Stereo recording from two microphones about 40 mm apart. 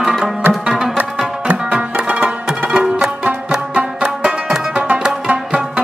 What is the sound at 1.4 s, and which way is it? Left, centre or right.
Music, right.